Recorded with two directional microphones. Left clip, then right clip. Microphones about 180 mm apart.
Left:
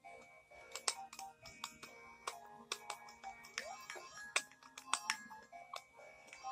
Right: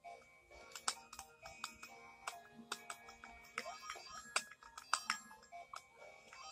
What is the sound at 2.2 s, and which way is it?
Music, 30° left (ahead or behind).